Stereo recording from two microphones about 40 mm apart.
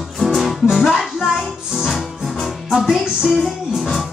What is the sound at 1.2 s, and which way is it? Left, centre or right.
Music, centre.